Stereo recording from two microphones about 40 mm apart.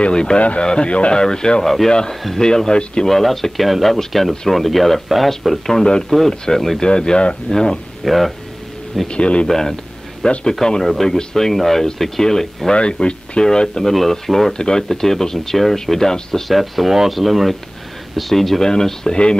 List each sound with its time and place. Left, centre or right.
0.0 s speech: left
1.2 s speech: centre
3.1 s speech: centre
5.7 s speech: centre
6.8 s speech: centre
8.0 s speech: centre
9.0 s speech: left
9.5 s speech: centre
10.2 s speech: left
10.8 s speech: centre
12.7 s speech: left
16.4 s speech: centre
18.6 s speech: centre